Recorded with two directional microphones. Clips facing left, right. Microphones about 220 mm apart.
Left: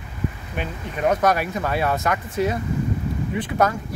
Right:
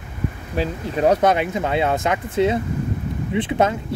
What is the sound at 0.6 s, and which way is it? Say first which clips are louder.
Speech: right 6 dB; 35° right (ahead or behind).